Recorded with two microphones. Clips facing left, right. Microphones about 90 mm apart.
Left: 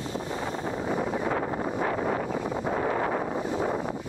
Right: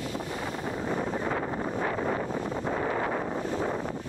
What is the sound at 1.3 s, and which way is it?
Wind noise, 40° left (ahead or behind).